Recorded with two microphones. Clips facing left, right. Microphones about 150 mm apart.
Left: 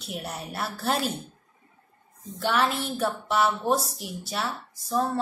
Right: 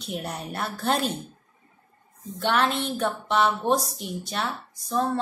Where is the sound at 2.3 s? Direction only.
Centre (ahead or behind).